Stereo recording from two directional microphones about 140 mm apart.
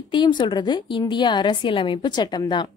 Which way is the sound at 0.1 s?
35° left (ahead or behind).